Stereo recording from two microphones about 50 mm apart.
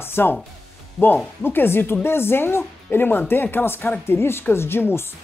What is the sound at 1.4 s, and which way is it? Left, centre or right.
Speech, left.